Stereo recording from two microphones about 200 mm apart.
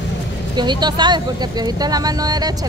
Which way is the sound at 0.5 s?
20° right (ahead or behind).